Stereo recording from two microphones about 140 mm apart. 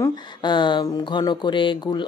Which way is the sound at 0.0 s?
35° left (ahead or behind).